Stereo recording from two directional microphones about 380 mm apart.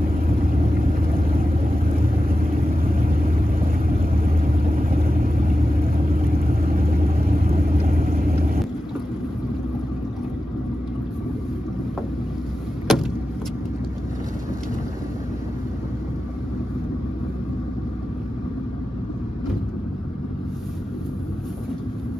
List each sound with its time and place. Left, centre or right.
1.1 s vehicle: right
12.9 s vehicle: centre